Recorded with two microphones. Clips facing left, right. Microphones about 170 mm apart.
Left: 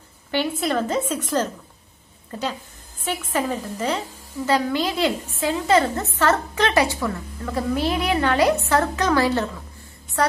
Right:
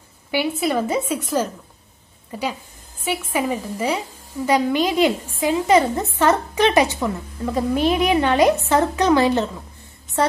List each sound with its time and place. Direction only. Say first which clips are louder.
0.3 s a woman's voice: right 2 dB; 10° right (ahead or behind); by 10.3 s 25° right (ahead or behind)